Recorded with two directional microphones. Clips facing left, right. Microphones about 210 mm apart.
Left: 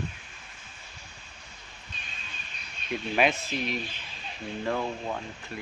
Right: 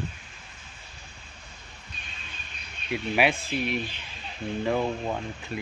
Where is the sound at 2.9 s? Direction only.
10° right (ahead or behind).